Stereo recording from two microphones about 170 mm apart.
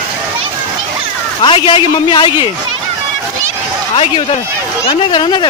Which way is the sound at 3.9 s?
35° left (ahead or behind).